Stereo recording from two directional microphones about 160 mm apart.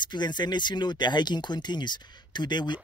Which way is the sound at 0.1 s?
30° left (ahead or behind).